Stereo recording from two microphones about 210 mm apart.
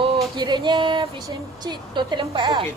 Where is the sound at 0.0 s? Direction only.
20° right (ahead or behind).